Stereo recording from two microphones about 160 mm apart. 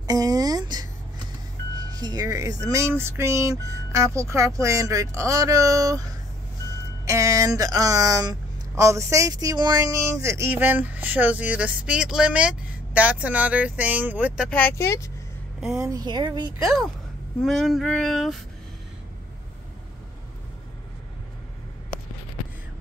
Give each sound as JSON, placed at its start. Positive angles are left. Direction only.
{"t": 0.0, "sound": "a sound", "side_deg": -25}
{"t": 1.9, "sound": "speech", "side_deg": -25}
{"t": 7.1, "sound": "speech", "side_deg": -20}
{"t": 14.5, "sound": "speech", "side_deg": 15}
{"t": 15.8, "sound": "speech", "side_deg": -25}
{"t": 16.6, "sound": "a sound", "side_deg": 0}